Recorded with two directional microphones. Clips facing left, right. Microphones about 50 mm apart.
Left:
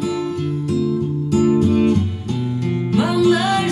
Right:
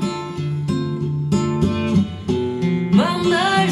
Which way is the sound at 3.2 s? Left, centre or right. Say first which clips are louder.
Left 2 dB; right.